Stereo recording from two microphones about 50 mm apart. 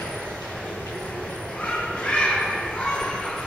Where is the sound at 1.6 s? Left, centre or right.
Centre.